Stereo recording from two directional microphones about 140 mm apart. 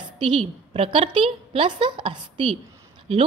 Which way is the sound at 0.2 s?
40° right (ahead or behind).